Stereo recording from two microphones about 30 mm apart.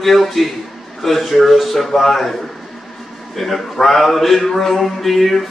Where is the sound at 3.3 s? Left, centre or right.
Centre.